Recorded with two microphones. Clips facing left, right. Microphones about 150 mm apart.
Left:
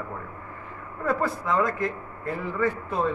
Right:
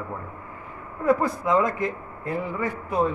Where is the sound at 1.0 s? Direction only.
15° right (ahead or behind).